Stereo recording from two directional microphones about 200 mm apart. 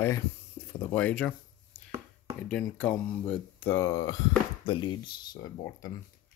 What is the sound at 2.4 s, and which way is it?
Speech, 5° left (ahead or behind).